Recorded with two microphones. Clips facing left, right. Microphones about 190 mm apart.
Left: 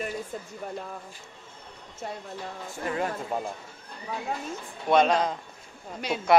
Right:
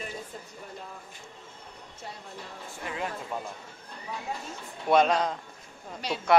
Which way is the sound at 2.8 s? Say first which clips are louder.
Left 5 dB; 45° left (ahead or behind).